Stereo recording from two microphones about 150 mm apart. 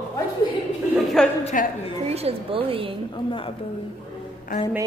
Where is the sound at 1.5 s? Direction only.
65° left (ahead or behind).